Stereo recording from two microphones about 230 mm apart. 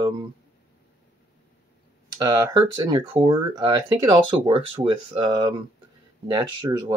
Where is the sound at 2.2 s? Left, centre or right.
Centre.